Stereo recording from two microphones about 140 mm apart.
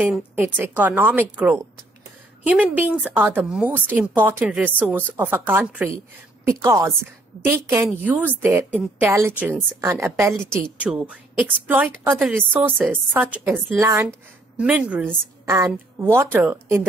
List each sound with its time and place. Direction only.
0.4 s a woman's voice: 15° right (ahead or behind)
12.2 s a woman's voice: centre (ahead or behind)
13.1 s a woman's voice: 15° right (ahead or behind)
14.6 s a woman's voice: 10° right (ahead or behind)